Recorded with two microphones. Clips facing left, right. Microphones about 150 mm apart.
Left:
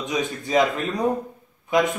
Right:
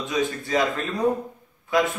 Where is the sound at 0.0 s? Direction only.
20° left (ahead or behind).